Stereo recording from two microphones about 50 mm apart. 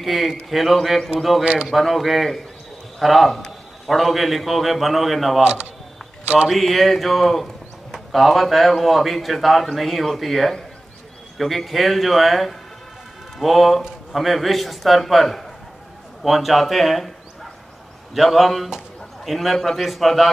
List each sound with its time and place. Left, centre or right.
0.0 s a man's voice: centre
1.4 s a man's voice: right
1.7 s a man's voice: centre
5.4 s a man's voice: right
6.5 s a man's voice: centre
18.1 s a man's voice: centre